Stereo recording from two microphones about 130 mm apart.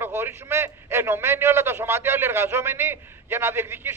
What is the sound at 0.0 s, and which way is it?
A man's voice, 20° right (ahead or behind).